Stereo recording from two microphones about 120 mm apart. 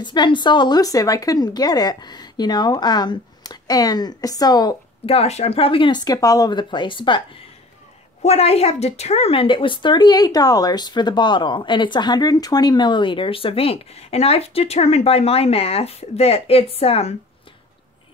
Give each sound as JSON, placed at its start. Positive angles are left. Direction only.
{"t": 0.0, "sound": "a woman's voice", "side_deg": 40}
{"t": 5.0, "sound": "a woman's voice", "side_deg": 60}
{"t": 8.2, "sound": "a woman's voice", "side_deg": 60}